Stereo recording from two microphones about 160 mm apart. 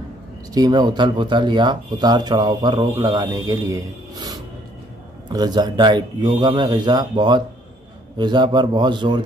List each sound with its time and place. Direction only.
0.6 s speech: 25° right (ahead or behind)